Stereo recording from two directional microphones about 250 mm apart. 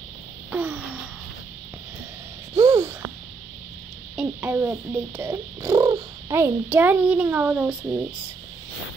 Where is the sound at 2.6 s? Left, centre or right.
Centre.